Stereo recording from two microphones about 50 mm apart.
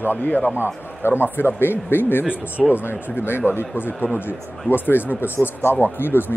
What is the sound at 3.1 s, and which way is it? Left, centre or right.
Speech, left.